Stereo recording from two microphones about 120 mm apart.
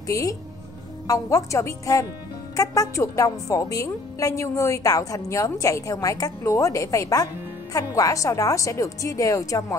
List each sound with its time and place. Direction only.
0.0 s a woman's voice: 30° left (ahead or behind)